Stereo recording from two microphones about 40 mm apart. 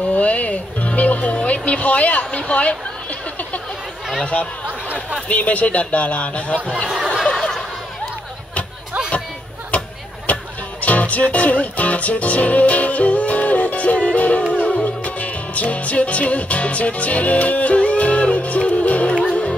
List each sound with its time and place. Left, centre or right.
0.1 s speech: left
5.3 s speech: left
7.4 s a sound: centre
9.7 s music: left